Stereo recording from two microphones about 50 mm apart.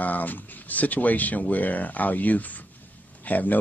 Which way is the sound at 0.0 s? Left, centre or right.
Left.